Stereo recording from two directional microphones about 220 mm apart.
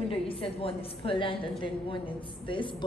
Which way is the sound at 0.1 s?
25° left (ahead or behind).